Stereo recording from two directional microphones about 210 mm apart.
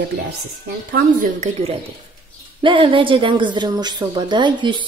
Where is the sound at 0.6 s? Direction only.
40° right (ahead or behind).